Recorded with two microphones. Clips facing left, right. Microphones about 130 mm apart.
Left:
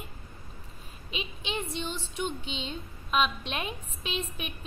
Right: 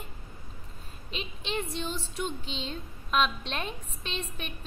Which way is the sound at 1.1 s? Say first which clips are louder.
Right 1 dB; centre (ahead or behind).